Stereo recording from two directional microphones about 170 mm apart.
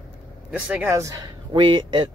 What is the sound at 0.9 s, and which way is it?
A man's voice, 20° right (ahead or behind).